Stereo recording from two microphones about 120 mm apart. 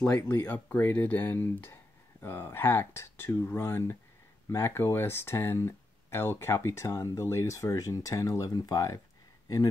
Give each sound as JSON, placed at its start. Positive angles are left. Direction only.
{"t": 0.0, "sound": "speech", "side_deg": 15}